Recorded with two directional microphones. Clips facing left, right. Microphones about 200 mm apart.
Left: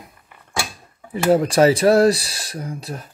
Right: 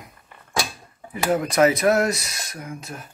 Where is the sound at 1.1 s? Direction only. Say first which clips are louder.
Left 5 dB; 30° left (ahead or behind).